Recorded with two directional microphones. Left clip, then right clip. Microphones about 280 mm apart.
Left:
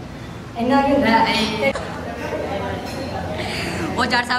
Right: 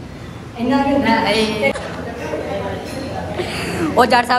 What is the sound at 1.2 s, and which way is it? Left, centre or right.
Speech, centre.